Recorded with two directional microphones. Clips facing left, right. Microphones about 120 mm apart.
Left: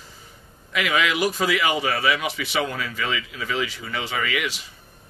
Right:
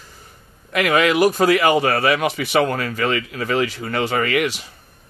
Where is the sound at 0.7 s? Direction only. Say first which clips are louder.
Right 6 dB; 50° right (ahead or behind).